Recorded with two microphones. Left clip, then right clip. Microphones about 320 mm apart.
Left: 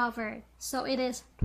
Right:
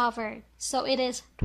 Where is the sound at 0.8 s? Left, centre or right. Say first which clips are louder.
Right 3 dB; centre.